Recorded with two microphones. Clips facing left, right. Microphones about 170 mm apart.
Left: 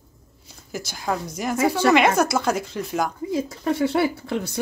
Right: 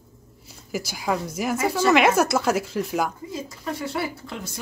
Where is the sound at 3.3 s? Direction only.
65° left (ahead or behind).